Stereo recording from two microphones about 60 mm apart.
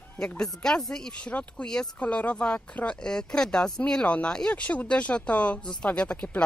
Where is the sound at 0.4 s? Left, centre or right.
Centre.